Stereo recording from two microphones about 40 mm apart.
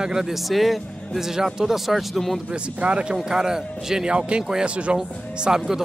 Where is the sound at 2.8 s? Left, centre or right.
Right.